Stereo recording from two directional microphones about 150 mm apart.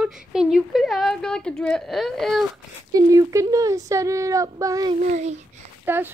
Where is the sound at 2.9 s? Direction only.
25° right (ahead or behind).